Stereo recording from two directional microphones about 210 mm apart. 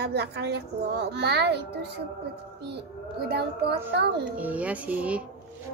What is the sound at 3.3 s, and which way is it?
Speech, 50° right (ahead or behind).